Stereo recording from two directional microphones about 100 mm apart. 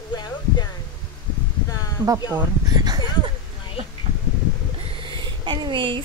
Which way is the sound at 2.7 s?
40° right (ahead or behind).